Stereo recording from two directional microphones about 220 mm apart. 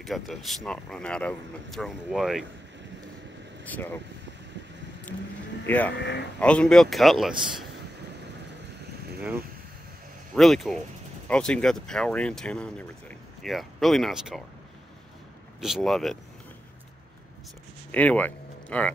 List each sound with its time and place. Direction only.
0.0 s speech: centre (ahead or behind)
3.6 s speech: 10° left (ahead or behind)
5.7 s speech: 5° left (ahead or behind)
5.9 s speech: 50° left (ahead or behind)
6.4 s speech: 5° left (ahead or behind)
10.3 s speech: centre (ahead or behind)
15.6 s speech: centre (ahead or behind)
17.9 s speech: 5° left (ahead or behind)